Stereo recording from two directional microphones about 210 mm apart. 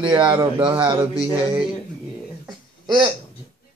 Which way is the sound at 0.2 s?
20° right (ahead or behind).